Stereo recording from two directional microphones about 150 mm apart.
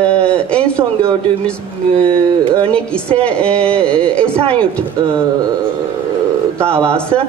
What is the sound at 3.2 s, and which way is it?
Speech, 5° left (ahead or behind).